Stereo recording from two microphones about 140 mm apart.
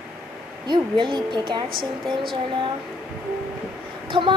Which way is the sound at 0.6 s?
35° right (ahead or behind).